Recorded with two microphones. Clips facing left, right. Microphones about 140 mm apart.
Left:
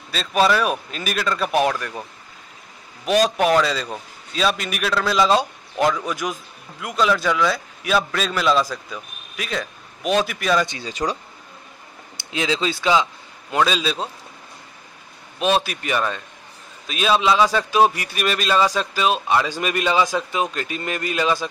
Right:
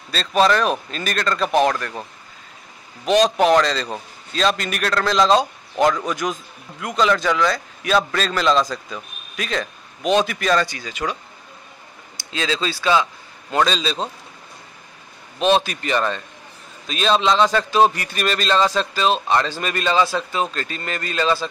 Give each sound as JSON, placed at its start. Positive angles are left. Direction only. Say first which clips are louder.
{"t": 0.1, "sound": "a man's voice", "louder": "right 1 dB", "side_deg": 5}
{"t": 3.1, "sound": "a man's voice", "louder": "right 2 dB", "side_deg": 5}
{"t": 10.7, "sound": "speech", "louder": "left 2 dB", "side_deg": 30}
{"t": 12.3, "sound": "a man's voice", "louder": "left 1 dB", "side_deg": 15}
{"t": 15.3, "sound": "a man's voice", "louder": "right 3 dB", "side_deg": 5}